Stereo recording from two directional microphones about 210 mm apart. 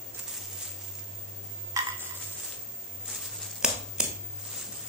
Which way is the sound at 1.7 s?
15° right (ahead or behind).